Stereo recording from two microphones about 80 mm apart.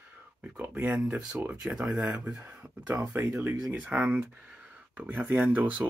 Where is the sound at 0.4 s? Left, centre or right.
Right.